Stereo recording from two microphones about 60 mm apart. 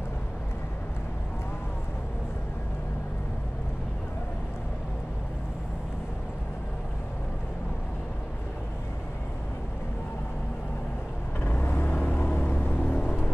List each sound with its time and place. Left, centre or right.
11.4 s vehicle: left
12.4 s music: left